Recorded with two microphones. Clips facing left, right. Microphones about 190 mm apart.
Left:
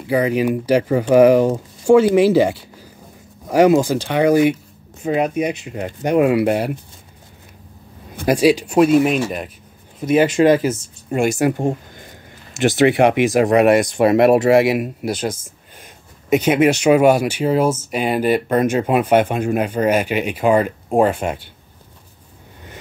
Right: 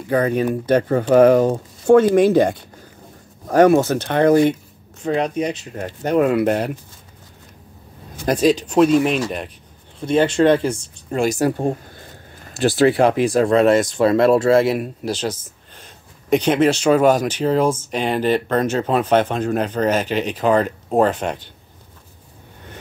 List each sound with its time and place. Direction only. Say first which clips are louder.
0.1 s speech: left 1 dB; 10° left (ahead or behind)
8.3 s speech: left 2 dB; 10° left (ahead or behind)
13.1 s speech: left 1 dB; 90° left
13.4 s speech: left 1 dB; 15° left (ahead or behind)